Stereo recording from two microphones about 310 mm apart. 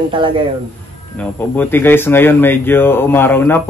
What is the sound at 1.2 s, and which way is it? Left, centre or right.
Speech, centre.